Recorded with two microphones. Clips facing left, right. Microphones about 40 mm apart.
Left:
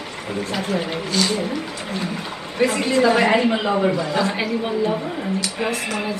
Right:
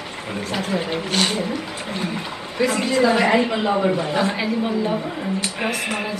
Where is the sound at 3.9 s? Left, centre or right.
Right.